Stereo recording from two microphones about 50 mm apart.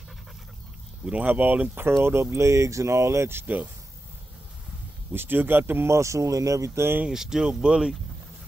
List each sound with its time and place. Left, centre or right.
1.2 s speech: right
1.9 s speech: right
5.1 s speech: right
5.9 s speech: right
7.1 s speech: centre